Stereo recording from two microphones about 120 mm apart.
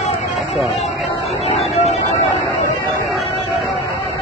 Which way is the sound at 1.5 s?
60° left (ahead or behind).